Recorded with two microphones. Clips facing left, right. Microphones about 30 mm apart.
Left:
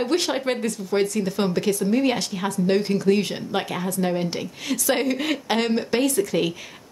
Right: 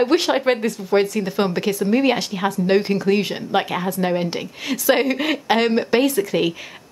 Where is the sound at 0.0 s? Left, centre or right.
Centre.